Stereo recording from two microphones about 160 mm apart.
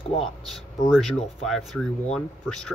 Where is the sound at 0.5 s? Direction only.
Centre (ahead or behind).